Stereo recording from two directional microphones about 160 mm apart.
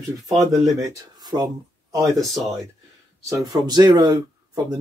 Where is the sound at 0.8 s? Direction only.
25° right (ahead or behind).